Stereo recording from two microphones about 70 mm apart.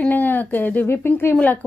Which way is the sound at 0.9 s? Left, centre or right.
Left.